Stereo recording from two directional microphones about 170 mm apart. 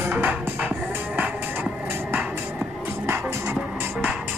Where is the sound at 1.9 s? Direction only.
10° right (ahead or behind).